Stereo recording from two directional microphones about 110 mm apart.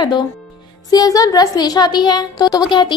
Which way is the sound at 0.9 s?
30° left (ahead or behind).